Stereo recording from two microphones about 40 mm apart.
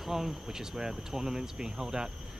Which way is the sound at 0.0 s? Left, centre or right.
Centre.